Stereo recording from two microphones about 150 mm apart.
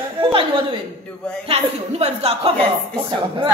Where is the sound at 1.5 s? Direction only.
40° right (ahead or behind).